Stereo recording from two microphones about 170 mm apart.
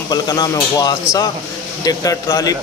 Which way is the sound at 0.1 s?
25° left (ahead or behind).